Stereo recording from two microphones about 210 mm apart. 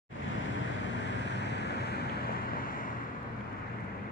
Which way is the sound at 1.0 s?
55° left (ahead or behind).